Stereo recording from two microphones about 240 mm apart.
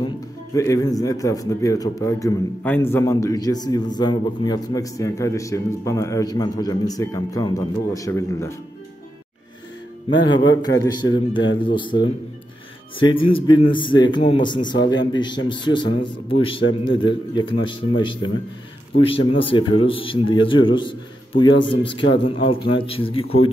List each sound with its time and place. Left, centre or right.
0.6 s a man's voice: centre
10.5 s a man's voice: centre